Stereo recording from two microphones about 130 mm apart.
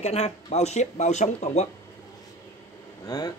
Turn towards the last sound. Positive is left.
turn(degrees=30)  # may be behind; listen again after turning